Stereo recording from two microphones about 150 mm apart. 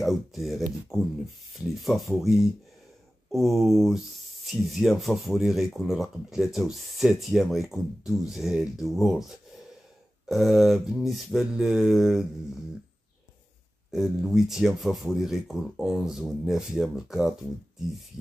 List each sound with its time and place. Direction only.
0.0 s speech: centre (ahead or behind)
0.9 s speech: 20° left (ahead or behind)
1.8 s speech: centre (ahead or behind)
13.9 s speech: centre (ahead or behind)